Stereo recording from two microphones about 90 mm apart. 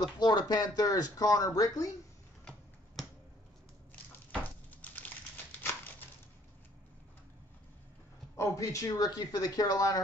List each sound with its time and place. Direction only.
0.0 s speech: 50° left (ahead or behind)
4.4 s a sound: 20° left (ahead or behind)
8.4 s speech: 40° left (ahead or behind)